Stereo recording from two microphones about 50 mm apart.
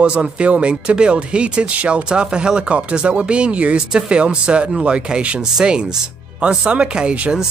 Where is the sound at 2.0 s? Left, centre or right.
Centre.